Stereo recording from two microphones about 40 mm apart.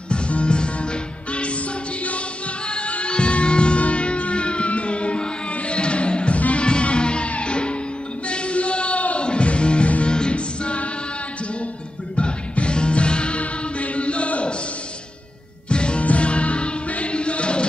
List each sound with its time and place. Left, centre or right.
0.1 s music: left
2.7 s music: left
12.2 s music: left
15.7 s music: left